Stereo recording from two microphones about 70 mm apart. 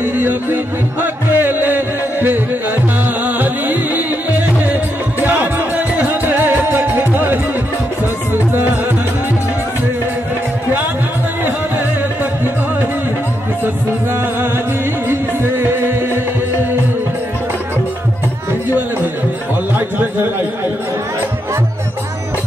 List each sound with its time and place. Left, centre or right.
0.0 s music: right
15.0 s music: right
18.7 s music: right
20.0 s a sound: right